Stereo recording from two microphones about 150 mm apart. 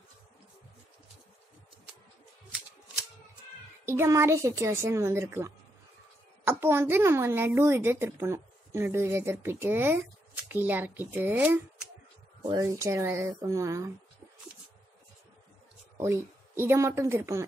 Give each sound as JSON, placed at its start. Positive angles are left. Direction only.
{"t": 3.8, "sound": "a woman's voice", "side_deg": -15}
{"t": 12.4, "sound": "speech", "side_deg": -20}
{"t": 16.0, "sound": "a woman's voice", "side_deg": -15}